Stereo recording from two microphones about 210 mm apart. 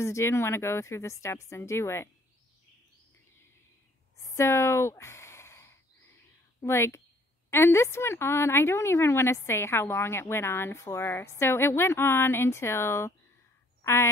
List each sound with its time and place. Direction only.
0.0 s a woman's voice: 10° left (ahead or behind)
4.2 s a sound: 15° left (ahead or behind)
6.6 s a woman's voice: 15° left (ahead or behind)